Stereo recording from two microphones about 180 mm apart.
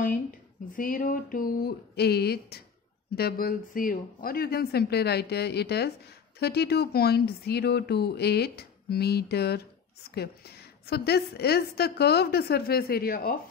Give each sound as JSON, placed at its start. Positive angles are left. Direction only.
{"t": 0.0, "sound": "speech", "side_deg": 50}